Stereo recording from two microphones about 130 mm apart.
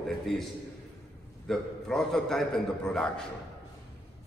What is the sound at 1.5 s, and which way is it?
A man's voice, 5° left (ahead or behind).